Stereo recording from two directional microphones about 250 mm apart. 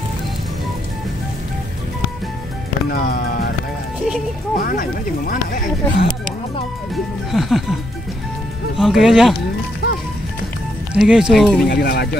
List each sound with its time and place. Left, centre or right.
2.9 s music: left
4.6 s speech: left
7.2 s speech: centre
8.7 s speech: centre
9.8 s music: left
10.9 s speech: centre
11.6 s speech: left